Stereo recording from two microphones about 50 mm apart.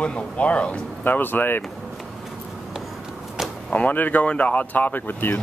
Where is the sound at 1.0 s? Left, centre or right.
Left.